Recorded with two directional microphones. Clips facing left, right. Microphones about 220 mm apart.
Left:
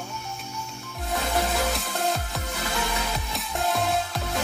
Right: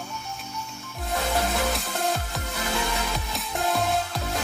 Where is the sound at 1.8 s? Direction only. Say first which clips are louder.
Even; centre (ahead or behind).